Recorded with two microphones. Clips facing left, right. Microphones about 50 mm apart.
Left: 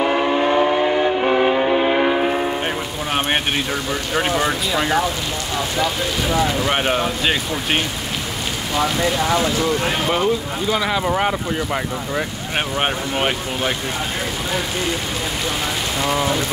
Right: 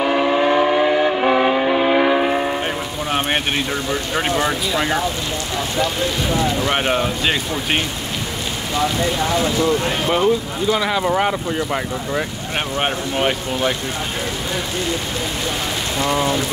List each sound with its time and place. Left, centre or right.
0.0 s vehicle: centre
2.6 s speech: centre
6.6 s speech: centre
9.4 s speech: centre
16.0 s speech: centre